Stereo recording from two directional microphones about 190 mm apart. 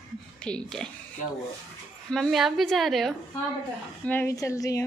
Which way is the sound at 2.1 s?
Centre (ahead or behind).